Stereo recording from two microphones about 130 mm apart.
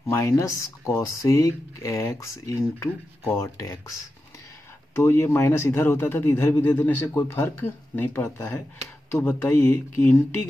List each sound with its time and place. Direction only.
0.0 s speech: 20° left (ahead or behind)
4.9 s speech: 20° left (ahead or behind)